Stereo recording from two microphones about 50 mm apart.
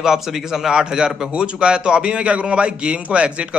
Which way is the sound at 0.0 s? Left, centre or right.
Centre.